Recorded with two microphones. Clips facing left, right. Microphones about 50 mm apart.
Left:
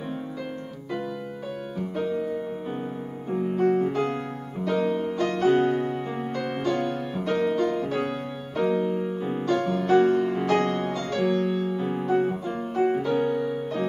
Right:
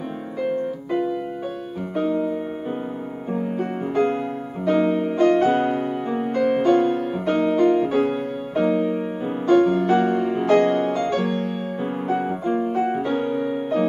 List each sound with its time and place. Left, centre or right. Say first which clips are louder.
2.0 s music: right 6 dB; right
3.3 s music: left 3 dB; centre; by 5.5 s right
5.8 s music: right 4 dB; centre; by 9.8 s right
9.8 s music: even; centre
10.1 s music: right 5 dB; right
12.4 s piano: right 6 dB; centre
13.0 s music: right 1 dB; right